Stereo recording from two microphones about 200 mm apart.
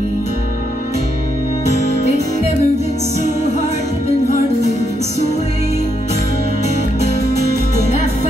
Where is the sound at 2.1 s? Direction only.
30° left (ahead or behind).